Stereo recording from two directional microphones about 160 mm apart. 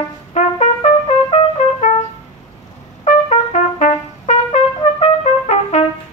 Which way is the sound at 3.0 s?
40° left (ahead or behind).